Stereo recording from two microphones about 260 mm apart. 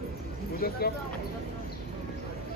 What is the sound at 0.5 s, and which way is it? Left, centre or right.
Vehicle, left.